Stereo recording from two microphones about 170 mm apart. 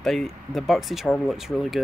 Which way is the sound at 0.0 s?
Centre (ahead or behind).